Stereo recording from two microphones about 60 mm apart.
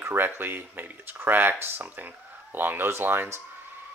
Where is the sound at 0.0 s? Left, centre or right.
Right.